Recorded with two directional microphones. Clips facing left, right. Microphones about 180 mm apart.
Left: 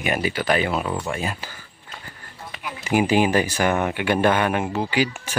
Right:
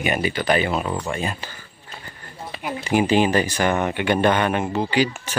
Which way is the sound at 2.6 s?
40° right (ahead or behind).